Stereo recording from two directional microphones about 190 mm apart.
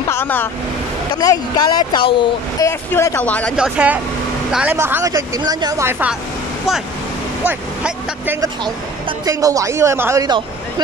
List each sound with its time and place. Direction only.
0.1 s speech: 10° left (ahead or behind)
3.5 s speech: 5° right (ahead or behind)
7.4 s speech: 10° right (ahead or behind)